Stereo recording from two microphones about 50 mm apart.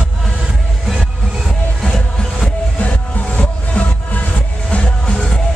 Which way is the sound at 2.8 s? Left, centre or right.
Left.